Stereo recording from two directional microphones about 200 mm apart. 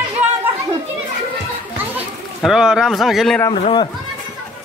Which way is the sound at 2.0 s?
5° right (ahead or behind).